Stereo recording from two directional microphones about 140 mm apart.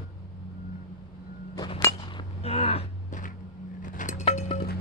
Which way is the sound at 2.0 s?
35° left (ahead or behind).